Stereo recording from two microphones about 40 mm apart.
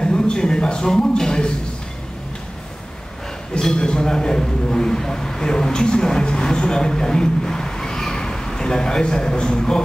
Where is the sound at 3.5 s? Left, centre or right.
Centre.